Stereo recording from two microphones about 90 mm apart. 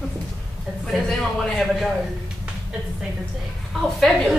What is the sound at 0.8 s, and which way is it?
A man's voice, 5° left (ahead or behind).